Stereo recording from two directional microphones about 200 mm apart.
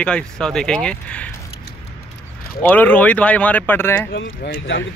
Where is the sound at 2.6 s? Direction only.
10° left (ahead or behind).